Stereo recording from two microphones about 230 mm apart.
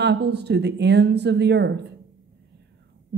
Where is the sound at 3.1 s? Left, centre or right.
Right.